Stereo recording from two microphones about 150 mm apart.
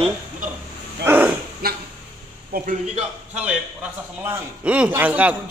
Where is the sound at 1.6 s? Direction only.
90° right.